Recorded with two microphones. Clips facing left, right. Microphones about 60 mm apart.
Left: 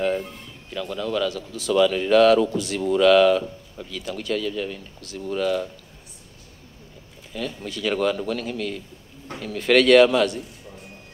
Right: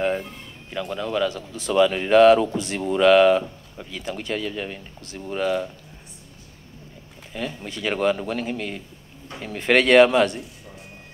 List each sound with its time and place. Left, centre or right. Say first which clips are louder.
0.0 s speech: even; right
7.3 s speech: even; right